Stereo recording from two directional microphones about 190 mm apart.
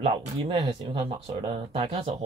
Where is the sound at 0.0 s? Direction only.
30° right (ahead or behind).